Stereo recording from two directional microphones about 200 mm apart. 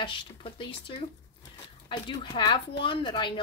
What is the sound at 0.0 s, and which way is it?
A woman's voice, 25° left (ahead or behind).